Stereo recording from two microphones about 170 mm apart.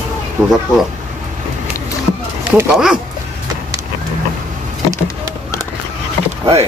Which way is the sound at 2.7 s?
5° right (ahead or behind).